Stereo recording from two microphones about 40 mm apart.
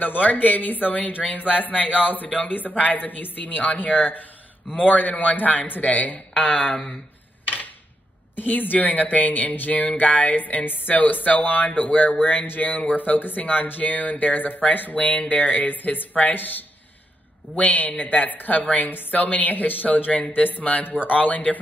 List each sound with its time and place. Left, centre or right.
0.0 s speech: left
7.4 s a sound: left
8.4 s speech: left
18.9 s a woman's voice: left
19.1 s speech: left